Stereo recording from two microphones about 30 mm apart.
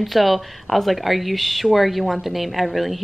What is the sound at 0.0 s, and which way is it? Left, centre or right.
A woman's voice, centre.